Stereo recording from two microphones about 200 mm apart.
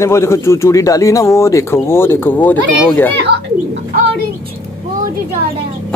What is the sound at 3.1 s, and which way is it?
Speech, 55° right (ahead or behind).